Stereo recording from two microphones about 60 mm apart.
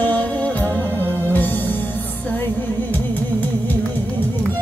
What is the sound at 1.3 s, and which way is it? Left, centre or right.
Music, left.